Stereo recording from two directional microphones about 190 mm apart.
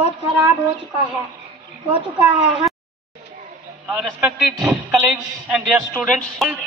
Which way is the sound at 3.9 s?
Centre (ahead or behind).